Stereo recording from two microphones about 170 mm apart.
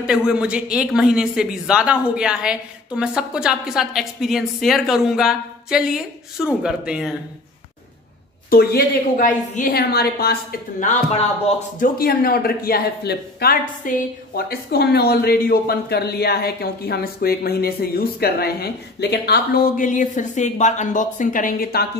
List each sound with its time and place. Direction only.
0.0 s speech: 5° right (ahead or behind)
8.5 s speech: 60° left (ahead or behind)
10.8 s speech: 40° left (ahead or behind)
11.8 s speech: 60° left (ahead or behind)